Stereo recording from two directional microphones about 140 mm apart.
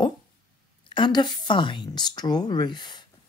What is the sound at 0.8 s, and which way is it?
Speech, 35° left (ahead or behind).